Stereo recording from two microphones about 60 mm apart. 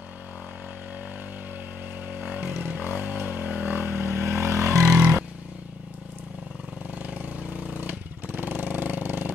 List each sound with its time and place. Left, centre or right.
2.0 s motorcycle: right
4.0 s vehicle: right
4.4 s vehicle: right
4.9 s vehicle: right
7.2 s vehicle: centre
7.8 s a sound: right